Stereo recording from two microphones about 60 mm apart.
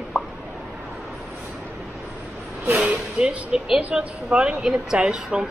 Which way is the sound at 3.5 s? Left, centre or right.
Centre.